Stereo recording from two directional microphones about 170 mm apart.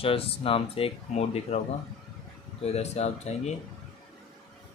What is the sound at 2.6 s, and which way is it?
Speech, 40° left (ahead or behind).